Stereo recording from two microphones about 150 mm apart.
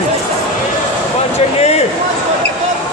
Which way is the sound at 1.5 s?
45° left (ahead or behind).